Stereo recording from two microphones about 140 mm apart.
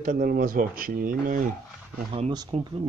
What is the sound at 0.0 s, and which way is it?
Speech, 80° right.